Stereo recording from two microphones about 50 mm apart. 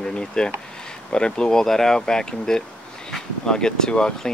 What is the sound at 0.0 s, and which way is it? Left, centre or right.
Speech, centre.